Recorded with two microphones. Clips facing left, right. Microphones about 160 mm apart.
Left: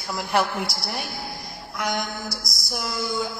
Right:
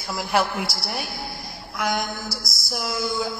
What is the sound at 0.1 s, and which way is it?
A man's voice, centre (ahead or behind).